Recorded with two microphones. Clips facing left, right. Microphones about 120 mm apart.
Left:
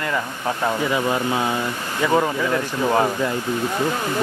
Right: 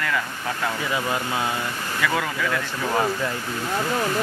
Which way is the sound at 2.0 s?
30° left (ahead or behind).